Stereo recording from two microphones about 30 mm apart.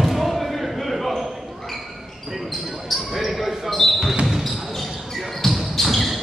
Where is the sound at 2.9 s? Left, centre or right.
Centre.